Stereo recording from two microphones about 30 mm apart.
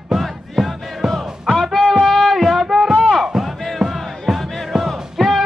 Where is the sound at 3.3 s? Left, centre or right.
Centre.